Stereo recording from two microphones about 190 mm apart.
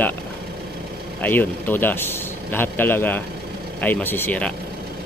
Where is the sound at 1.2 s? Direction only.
10° left (ahead or behind).